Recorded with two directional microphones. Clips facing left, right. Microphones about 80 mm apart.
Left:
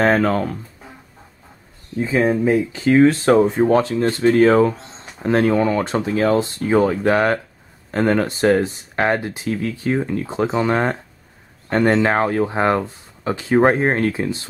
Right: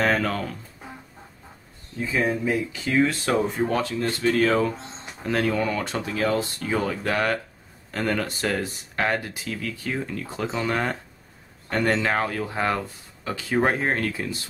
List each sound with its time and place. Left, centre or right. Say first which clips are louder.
0.0 s speech: left 7 dB; left
2.0 s speech: left 7 dB; left